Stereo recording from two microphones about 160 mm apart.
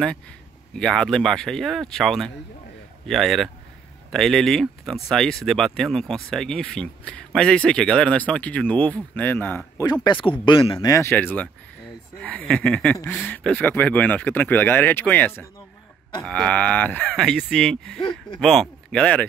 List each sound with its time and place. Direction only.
0.7 s speech: 5° left (ahead or behind)
10.0 s speech: 30° left (ahead or behind)
10.9 s speech: 15° left (ahead or behind)